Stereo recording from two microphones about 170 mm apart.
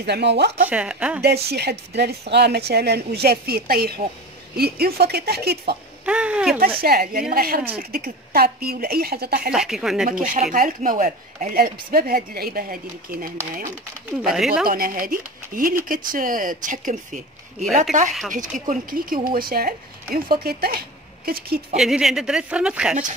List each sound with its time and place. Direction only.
0.0 s speech: 85° right
0.7 s speech: 5° right (ahead or behind)
1.2 s a woman's voice: 70° right (ahead or behind)
6.0 s a sound: 5° right (ahead or behind)
6.8 s speech: 60° right (ahead or behind)
9.5 s speech: 5° right (ahead or behind)
10.2 s speech: 50° right (ahead or behind)
14.3 s speech: 5° right (ahead or behind)
14.7 s speech: 55° right (ahead or behind)
18.3 s speech: 50° right (ahead or behind)
21.7 s speech: centre (ahead or behind)